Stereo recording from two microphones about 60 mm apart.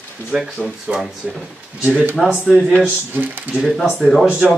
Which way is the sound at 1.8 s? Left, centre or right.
Right.